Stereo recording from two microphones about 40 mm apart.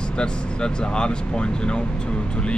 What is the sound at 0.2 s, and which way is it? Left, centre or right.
Speech, left.